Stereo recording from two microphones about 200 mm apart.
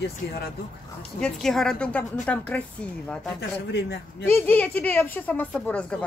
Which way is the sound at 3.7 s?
55° left (ahead or behind).